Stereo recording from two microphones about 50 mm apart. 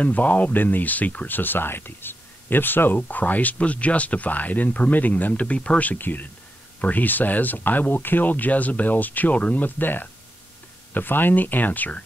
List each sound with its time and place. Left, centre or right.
0.0 s speech: left
9.8 s speech: left